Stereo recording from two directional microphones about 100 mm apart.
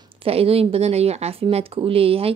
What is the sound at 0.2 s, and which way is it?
Speech, 80° right.